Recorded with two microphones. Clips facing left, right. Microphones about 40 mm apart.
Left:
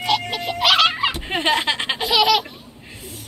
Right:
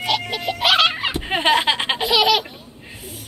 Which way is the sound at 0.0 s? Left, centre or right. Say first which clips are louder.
Left 1 dB; centre.